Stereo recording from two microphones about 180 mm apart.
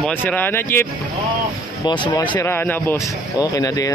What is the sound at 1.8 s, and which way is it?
Speech, 25° left (ahead or behind).